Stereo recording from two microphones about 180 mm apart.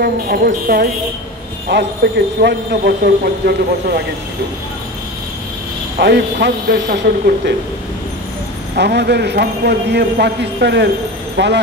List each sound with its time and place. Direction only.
0.0 s a man's voice: 60° right (ahead or behind)
1.7 s a man's voice: 70° right (ahead or behind)
2.4 s a man's voice: 60° right (ahead or behind)
5.9 s a man's voice: 65° right (ahead or behind)
8.7 s a man's voice: 65° right (ahead or behind)